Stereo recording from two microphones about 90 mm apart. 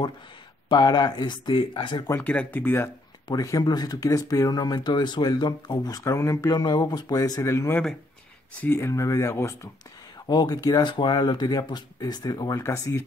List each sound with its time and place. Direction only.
0.7 s speech: 50° left (ahead or behind)
2.1 s speech: 20° left (ahead or behind)
3.3 s speech: 45° left (ahead or behind)
10.2 s speech: 50° left (ahead or behind); by 13.0 s 35° left (ahead or behind)